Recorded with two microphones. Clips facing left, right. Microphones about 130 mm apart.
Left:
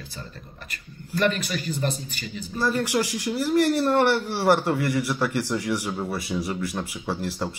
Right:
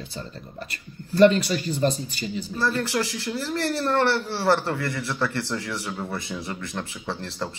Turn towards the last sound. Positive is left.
turn(degrees=10)  # may be behind; listen again after turning